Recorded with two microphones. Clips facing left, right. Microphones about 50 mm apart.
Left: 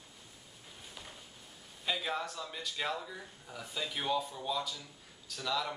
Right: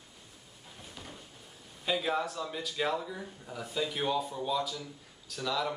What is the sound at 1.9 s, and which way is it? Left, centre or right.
Speech, centre.